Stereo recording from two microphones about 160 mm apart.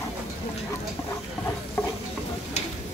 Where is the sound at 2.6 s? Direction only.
45° left (ahead or behind).